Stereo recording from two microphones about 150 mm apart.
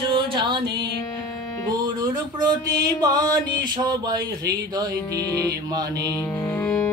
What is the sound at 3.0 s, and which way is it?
Music, 25° right (ahead or behind).